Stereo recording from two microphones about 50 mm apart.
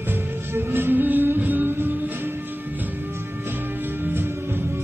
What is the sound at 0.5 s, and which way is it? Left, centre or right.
Music, right.